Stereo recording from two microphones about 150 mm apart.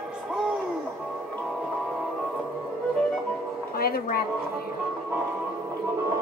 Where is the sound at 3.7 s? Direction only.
85° left.